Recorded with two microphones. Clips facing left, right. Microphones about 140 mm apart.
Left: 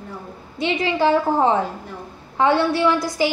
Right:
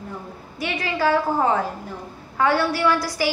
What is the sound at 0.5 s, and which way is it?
A woman's voice, 25° left (ahead or behind).